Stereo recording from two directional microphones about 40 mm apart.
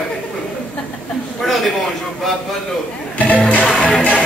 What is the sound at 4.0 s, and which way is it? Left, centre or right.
Music, left.